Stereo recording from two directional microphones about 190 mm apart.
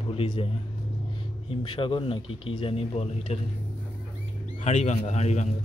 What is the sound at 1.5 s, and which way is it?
Speech, 25° left (ahead or behind).